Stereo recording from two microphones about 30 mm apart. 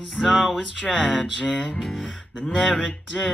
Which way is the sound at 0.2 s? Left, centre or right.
Centre.